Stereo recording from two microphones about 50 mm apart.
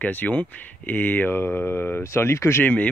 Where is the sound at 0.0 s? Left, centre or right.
Left.